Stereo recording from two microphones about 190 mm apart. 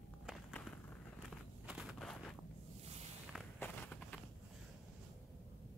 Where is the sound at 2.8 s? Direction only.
35° right (ahead or behind).